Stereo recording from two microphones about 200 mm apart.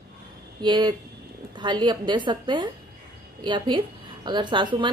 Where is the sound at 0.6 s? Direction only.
20° right (ahead or behind).